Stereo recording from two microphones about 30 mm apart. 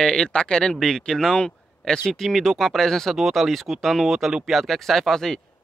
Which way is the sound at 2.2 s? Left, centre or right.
Centre.